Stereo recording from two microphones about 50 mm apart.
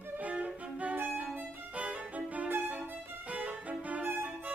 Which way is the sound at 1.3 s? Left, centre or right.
Right.